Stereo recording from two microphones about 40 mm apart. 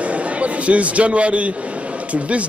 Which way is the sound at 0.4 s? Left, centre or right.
Right.